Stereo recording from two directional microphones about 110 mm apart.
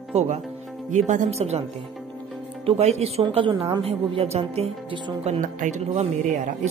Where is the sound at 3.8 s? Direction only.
65° right (ahead or behind).